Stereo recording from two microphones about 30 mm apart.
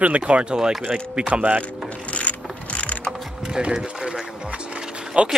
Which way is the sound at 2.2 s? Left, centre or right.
Left.